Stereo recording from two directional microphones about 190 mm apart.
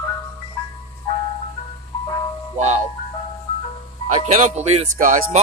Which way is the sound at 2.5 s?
35° right (ahead or behind).